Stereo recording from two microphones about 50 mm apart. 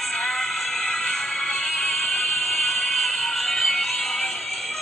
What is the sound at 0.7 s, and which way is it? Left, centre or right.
Music, centre.